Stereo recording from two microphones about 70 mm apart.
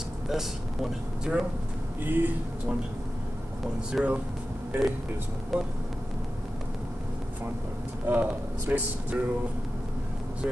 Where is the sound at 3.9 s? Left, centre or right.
Right.